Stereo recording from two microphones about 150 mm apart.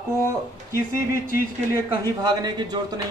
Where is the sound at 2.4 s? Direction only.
30° right (ahead or behind).